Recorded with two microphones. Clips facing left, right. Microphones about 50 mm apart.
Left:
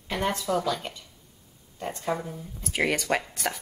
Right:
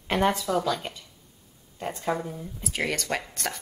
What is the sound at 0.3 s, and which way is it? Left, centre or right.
Speech, centre.